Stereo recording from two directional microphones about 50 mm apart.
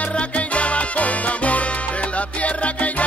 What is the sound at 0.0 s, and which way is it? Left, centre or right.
Music, left.